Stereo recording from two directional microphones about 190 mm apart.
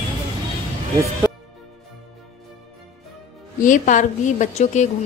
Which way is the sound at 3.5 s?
40° left (ahead or behind).